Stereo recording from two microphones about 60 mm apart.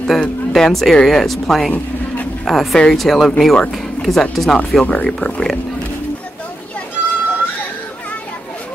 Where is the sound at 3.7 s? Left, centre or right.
Centre.